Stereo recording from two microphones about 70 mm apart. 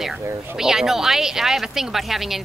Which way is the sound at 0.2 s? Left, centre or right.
Right.